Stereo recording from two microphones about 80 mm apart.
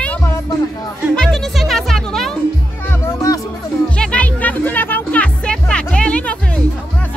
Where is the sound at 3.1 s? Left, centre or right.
Left.